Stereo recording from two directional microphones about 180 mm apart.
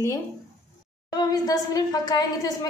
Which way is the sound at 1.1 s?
20° left (ahead or behind).